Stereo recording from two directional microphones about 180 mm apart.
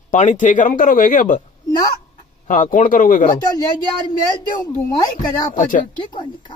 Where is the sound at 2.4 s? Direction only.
45° left (ahead or behind).